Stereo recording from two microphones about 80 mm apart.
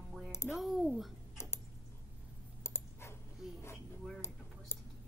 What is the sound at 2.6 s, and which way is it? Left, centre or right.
Dog, left.